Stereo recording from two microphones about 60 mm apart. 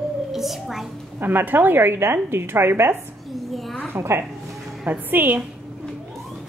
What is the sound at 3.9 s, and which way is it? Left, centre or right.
Speech, right.